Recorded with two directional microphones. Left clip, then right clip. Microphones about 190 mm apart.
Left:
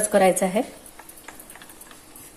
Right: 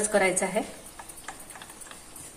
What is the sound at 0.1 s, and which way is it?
Speech, 35° left (ahead or behind).